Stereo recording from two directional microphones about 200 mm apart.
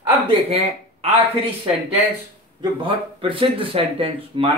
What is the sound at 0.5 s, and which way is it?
Speech, 30° right (ahead or behind).